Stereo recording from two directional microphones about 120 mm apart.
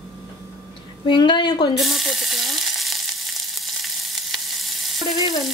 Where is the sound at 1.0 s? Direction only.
40° left (ahead or behind).